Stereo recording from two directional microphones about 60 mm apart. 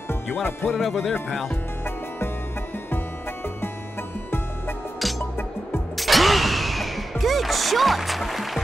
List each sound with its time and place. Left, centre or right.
0.4 s speech: left
0.7 s speech: centre
5.9 s music: centre